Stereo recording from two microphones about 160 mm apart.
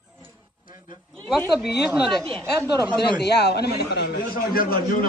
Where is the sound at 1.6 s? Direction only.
Centre (ahead or behind).